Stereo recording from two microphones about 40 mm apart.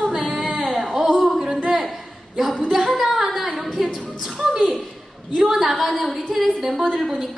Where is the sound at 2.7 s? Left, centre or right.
Centre.